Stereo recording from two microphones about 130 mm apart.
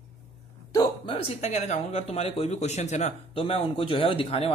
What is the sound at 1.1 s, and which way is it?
Speech, 55° left (ahead or behind).